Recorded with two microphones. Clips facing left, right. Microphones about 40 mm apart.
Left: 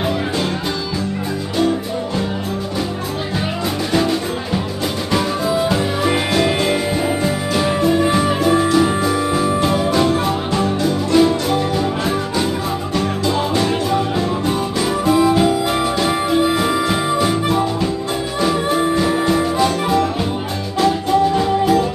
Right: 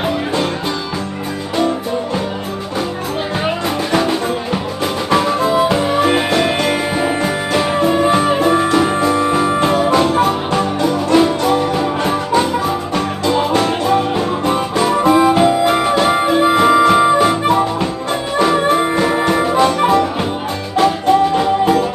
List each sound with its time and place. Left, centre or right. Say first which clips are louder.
3.9 s music: right 2 dB; right
13.5 s music: right 3 dB; right
15.4 s music: right 4 dB; right